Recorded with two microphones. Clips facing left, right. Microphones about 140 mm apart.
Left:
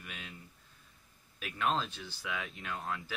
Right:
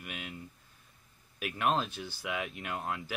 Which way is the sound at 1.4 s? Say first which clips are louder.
Right 3 dB; 15° right (ahead or behind).